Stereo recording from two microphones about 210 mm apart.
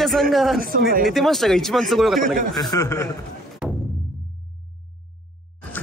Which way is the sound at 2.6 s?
15° left (ahead or behind).